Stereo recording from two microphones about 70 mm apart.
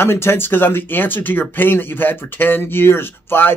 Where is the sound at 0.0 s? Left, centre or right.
Left.